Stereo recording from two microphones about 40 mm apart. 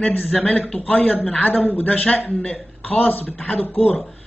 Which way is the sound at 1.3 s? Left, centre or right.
Left.